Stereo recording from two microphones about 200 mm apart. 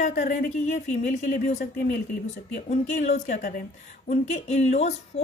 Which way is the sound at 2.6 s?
35° left (ahead or behind).